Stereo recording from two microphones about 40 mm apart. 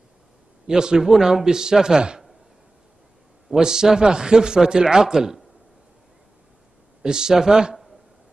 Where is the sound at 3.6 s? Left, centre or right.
Centre.